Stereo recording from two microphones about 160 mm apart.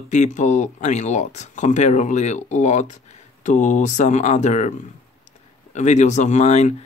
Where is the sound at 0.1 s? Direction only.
50° left (ahead or behind).